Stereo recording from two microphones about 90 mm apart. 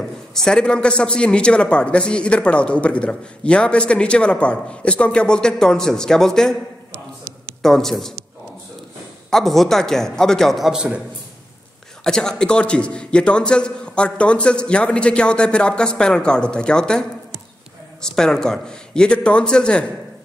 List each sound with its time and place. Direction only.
0.3 s a man's voice: 5° left (ahead or behind)
6.9 s a sound: 25° right (ahead or behind)
7.6 s a man's voice: 5° left (ahead or behind)
9.3 s a man's voice: 5° left (ahead or behind)
12.0 s a man's voice: 5° left (ahead or behind)
18.0 s a man's voice: 5° left (ahead or behind)